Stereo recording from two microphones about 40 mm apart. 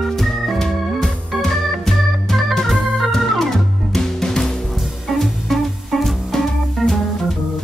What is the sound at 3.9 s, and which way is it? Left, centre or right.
Music, centre.